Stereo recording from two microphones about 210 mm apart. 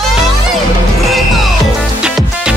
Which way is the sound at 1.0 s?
Centre (ahead or behind).